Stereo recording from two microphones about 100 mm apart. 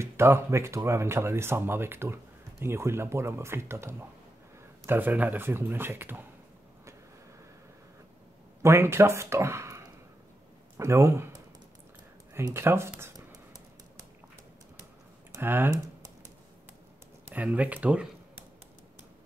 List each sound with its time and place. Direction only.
0.0 s speech: 25° right (ahead or behind)
8.6 s speech: 25° right (ahead or behind)
12.5 s speech: 25° right (ahead or behind)
13.3 s a sound: 40° right (ahead or behind)
15.3 s speech: 20° right (ahead or behind)
15.7 s typing: 35° right (ahead or behind)
17.2 s speech: 15° right (ahead or behind)